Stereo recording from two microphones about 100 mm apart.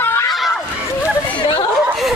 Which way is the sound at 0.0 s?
25° left (ahead or behind).